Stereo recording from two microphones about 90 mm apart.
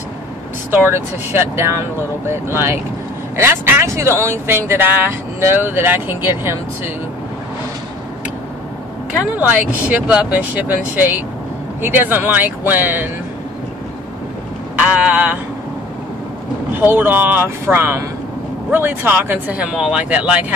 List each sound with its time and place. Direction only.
0.7 s speech: 25° right (ahead or behind)
9.2 s speech: 15° right (ahead or behind)
14.8 s speech: 15° right (ahead or behind)
16.8 s speech: 25° right (ahead or behind)